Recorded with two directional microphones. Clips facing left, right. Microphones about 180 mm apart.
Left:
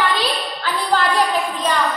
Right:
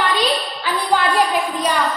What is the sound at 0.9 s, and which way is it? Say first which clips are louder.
Speech: right 1 dB; 10° right (ahead or behind).